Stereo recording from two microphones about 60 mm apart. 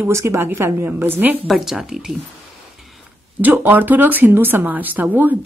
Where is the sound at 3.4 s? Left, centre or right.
Right.